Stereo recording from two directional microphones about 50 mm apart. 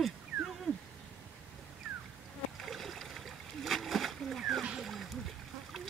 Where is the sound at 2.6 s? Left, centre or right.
Centre.